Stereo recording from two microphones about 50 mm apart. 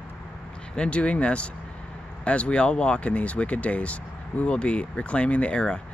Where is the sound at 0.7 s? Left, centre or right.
Left.